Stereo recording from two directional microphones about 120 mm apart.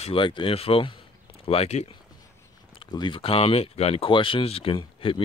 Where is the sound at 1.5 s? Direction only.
60° left (ahead or behind).